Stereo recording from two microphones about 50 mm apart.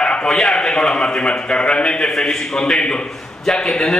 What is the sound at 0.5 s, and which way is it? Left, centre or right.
A man's voice, centre.